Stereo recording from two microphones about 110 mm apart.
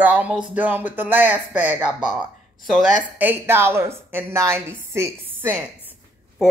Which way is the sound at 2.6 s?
Centre (ahead or behind).